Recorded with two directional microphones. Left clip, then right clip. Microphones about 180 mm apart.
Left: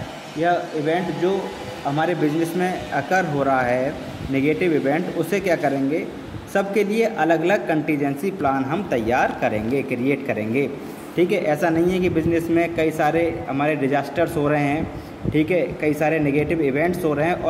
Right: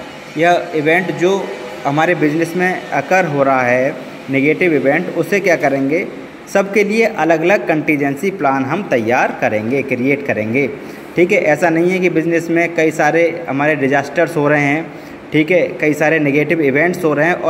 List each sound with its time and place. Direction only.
0.4 s speech: 35° right (ahead or behind)
2.0 s a man's voice: 20° right (ahead or behind)